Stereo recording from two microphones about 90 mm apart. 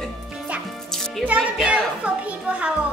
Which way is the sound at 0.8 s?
5° left (ahead or behind).